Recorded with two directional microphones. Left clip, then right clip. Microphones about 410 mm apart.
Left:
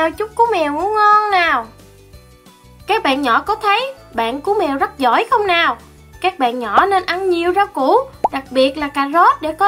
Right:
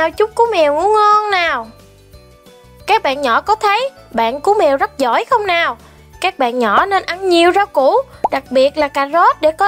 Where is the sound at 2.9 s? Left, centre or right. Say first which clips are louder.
Right 2 dB; right.